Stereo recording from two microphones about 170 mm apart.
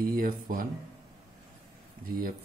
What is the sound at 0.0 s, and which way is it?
Speech, 55° right (ahead or behind).